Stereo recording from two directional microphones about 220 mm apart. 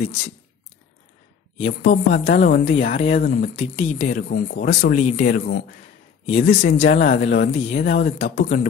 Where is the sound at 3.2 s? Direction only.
40° left (ahead or behind).